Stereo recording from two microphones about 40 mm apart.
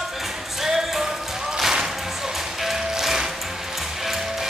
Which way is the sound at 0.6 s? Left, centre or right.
Centre.